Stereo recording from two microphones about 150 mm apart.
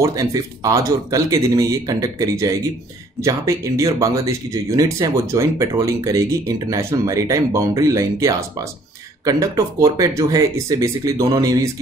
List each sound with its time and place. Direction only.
0.0 s speech: 20° right (ahead or behind)